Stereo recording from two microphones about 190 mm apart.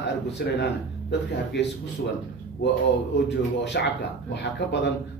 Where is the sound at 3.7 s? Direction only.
60° left (ahead or behind).